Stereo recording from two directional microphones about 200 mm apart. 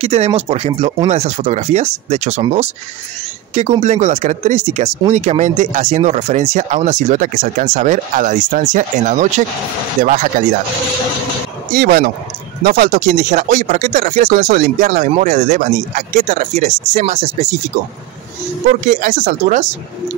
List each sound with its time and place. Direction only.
0.0 s speech: 30° right (ahead or behind)
3.8 s speech: 35° right (ahead or behind)
11.7 s speech: 45° right (ahead or behind)
18.9 s speech: 40° right (ahead or behind)